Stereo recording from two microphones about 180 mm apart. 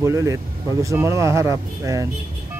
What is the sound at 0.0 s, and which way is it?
Speech, 15° right (ahead or behind).